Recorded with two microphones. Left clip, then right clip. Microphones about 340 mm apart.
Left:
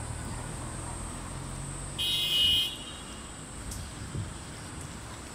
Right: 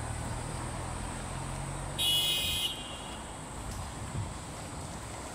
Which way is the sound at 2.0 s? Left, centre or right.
Centre.